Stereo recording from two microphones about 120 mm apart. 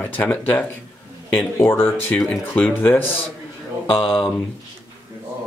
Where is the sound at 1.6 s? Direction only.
25° left (ahead or behind).